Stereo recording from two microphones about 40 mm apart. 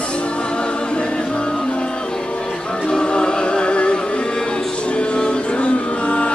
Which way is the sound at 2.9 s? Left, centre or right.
Left.